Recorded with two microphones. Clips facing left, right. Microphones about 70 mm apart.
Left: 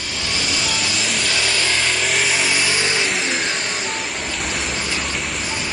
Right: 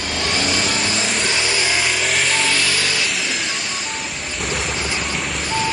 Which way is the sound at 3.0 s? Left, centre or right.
Left.